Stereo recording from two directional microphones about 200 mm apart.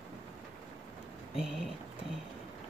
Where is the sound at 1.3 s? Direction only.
5° right (ahead or behind).